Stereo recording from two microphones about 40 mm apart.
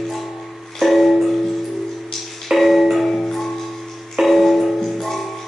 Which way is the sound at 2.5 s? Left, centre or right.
Centre.